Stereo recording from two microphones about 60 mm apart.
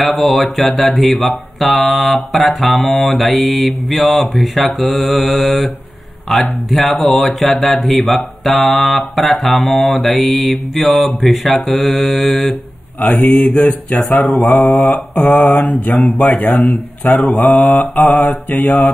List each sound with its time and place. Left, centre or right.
0.0 s speech: centre
13.2 s mantra: centre
13.7 s speech: left
14.1 s speech: centre
16.3 s speech: centre
17.1 s speech: centre
18.6 s mantra: centre